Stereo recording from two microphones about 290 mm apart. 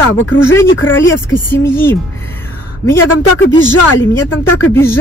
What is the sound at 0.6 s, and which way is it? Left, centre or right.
Speech, left.